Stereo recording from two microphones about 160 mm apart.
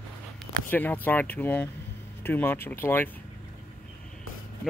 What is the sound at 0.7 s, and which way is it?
Speech, 10° left (ahead or behind).